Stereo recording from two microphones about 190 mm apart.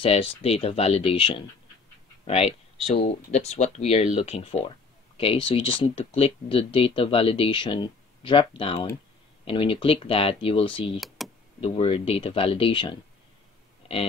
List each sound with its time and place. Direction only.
0.0 s speech: 30° left (ahead or behind)
11.2 s power windows: centre (ahead or behind)
11.6 s speech: 30° left (ahead or behind)